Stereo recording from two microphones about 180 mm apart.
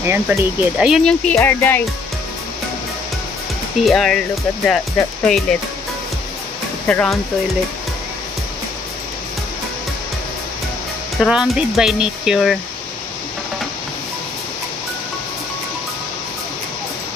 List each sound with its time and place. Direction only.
0.4 s speech: 5° right (ahead or behind); by 1.8 s 10° left (ahead or behind)
3.8 s speech: centre (ahead or behind)
6.9 s speech: 5° left (ahead or behind)
11.2 s speech: 5° right (ahead or behind)